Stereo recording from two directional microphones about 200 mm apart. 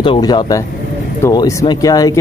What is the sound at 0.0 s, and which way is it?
Speech, 20° left (ahead or behind).